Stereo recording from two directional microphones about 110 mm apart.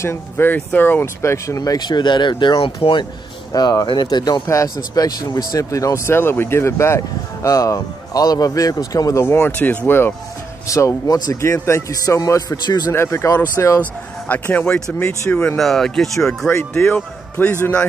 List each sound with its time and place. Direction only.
0.0 s speech: 20° left (ahead or behind); by 3.1 s 50° left (ahead or behind)
3.5 s speech: 40° left (ahead or behind)
9.2 s speech: 20° left (ahead or behind)
10.7 s speech: 30° left (ahead or behind)
11.4 s speech: 25° left (ahead or behind)
12.9 s speech: 25° left (ahead or behind)
13.7 s speech: 15° left (ahead or behind)
15.0 s speech: 20° left (ahead or behind)
15.3 s speech: 5° left (ahead or behind)